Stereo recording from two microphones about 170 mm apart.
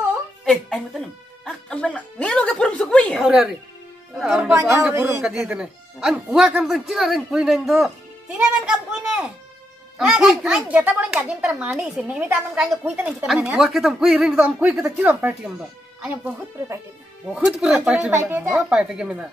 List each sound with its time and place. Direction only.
0.5 s a child's voice: centre (ahead or behind)
4.5 s speech: 15° right (ahead or behind)
5.2 s a child's voice: 5° right (ahead or behind)
17.3 s a child's voice: 5° right (ahead or behind)